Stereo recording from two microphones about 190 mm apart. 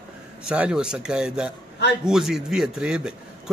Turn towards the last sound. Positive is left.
turn(degrees=-5)  # may be behind; listen again after turning